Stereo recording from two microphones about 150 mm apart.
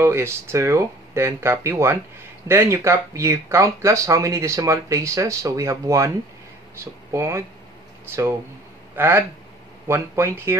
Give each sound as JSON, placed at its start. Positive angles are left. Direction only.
{"t": 0.0, "sound": "speech", "side_deg": -15}
{"t": 8.9, "sound": "speech", "side_deg": -15}